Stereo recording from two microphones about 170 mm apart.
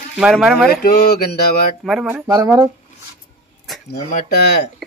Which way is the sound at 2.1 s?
15° right (ahead or behind).